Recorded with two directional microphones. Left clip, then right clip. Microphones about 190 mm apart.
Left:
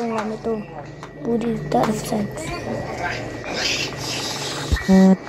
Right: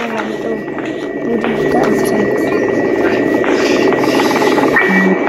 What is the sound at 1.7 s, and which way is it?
Speech, centre (ahead or behind).